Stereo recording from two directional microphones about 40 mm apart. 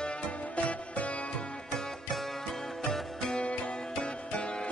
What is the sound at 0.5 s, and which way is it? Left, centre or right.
Music, left.